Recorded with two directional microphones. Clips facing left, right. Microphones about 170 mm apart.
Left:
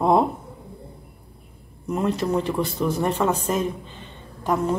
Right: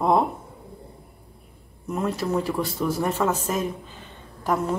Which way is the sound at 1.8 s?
Centre (ahead or behind).